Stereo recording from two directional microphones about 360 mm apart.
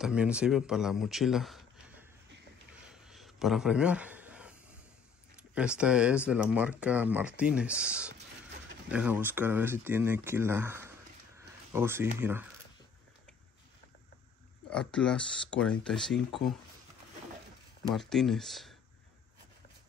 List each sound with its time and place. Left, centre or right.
0.0 s speech: centre
2.7 s a sound: centre
5.3 s speech: centre
14.7 s speech: centre
17.9 s speech: centre